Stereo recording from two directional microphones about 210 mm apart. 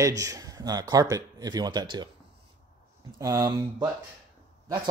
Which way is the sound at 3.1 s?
15° right (ahead or behind).